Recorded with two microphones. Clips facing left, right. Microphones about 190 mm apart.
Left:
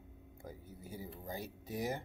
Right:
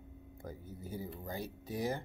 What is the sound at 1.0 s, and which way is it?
Speech, 15° left (ahead or behind).